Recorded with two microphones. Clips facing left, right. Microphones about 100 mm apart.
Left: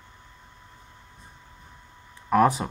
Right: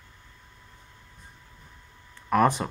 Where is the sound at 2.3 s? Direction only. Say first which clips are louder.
Left 2 dB; 5° left (ahead or behind).